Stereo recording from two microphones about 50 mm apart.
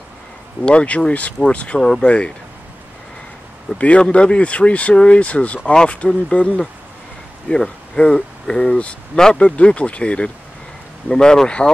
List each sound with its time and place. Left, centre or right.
0.7 s speech: left
1.8 s speech: centre
3.7 s speech: left